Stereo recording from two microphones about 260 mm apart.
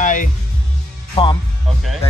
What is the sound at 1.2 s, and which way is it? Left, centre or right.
Speech, centre.